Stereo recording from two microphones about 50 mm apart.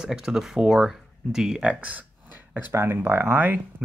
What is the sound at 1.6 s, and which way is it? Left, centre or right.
Speech, right.